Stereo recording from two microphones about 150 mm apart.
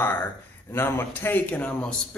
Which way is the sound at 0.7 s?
15° left (ahead or behind).